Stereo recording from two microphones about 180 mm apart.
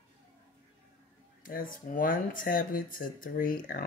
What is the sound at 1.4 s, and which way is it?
Speech, 50° left (ahead or behind).